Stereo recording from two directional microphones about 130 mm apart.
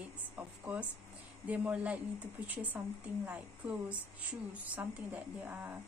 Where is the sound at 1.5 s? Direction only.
10° right (ahead or behind).